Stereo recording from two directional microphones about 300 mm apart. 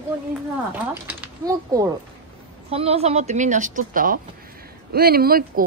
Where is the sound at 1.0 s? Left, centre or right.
Centre; by 5.6 s right.